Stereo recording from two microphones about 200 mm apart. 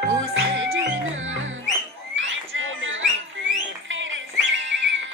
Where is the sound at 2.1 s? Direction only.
70° right (ahead or behind).